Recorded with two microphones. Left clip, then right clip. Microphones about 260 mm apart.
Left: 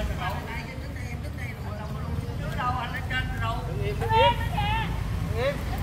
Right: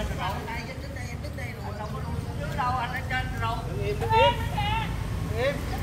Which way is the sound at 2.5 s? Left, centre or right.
Centre.